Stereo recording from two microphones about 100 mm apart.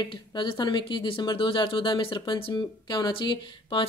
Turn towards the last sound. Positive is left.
turn(degrees=50)  # may be behind; listen again after turning